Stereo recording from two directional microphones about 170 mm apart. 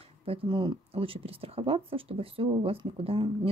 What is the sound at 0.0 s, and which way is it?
Speech, 35° right (ahead or behind).